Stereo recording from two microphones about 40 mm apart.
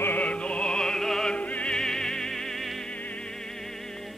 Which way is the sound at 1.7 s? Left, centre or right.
Centre.